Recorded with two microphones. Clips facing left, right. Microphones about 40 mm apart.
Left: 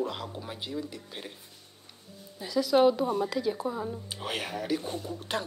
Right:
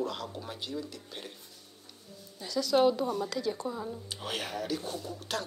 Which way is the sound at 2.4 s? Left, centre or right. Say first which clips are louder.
Left 3 dB; centre.